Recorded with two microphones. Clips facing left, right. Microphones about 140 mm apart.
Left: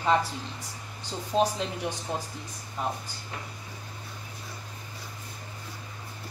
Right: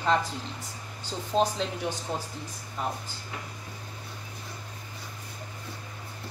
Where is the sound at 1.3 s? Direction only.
5° left (ahead or behind).